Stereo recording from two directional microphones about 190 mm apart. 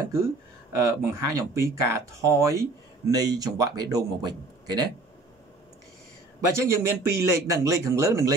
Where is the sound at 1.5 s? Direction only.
15° right (ahead or behind).